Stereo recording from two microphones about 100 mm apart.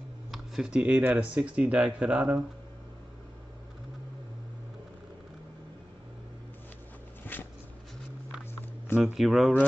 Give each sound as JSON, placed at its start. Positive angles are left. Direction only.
{"t": 0.3, "sound": "speech", "side_deg": -5}
{"t": 7.3, "sound": "a sound", "side_deg": 20}
{"t": 9.0, "sound": "speech", "side_deg": 0}